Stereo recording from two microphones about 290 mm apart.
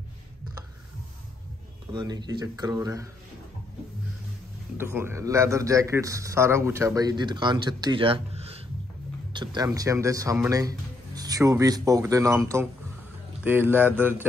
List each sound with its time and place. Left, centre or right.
1.9 s a man's voice: centre
4.7 s a man's voice: centre